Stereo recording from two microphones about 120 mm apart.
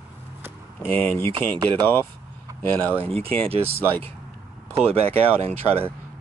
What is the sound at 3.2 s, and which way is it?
Speech, 55° right (ahead or behind).